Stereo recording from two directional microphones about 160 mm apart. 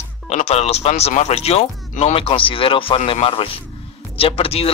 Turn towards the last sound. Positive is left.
turn(degrees=40)  # may be behind; listen again after turning